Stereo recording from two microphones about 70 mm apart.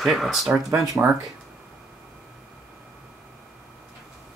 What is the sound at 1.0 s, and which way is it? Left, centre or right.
Speech, right.